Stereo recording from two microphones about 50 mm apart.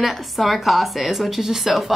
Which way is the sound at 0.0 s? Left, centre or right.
Centre.